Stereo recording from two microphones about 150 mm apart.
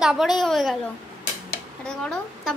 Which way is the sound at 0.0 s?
5° right (ahead or behind).